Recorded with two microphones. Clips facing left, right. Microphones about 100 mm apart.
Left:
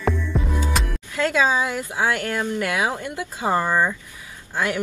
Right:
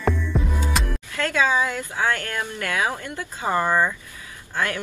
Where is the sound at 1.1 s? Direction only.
20° left (ahead or behind).